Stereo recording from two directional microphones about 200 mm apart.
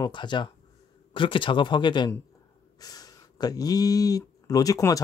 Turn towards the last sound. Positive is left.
turn(degrees=15)  # may be behind; listen again after turning